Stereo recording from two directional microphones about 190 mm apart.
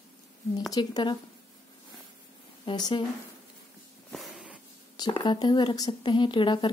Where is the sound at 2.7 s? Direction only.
25° left (ahead or behind).